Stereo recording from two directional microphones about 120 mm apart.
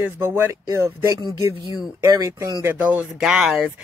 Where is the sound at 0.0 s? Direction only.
20° right (ahead or behind).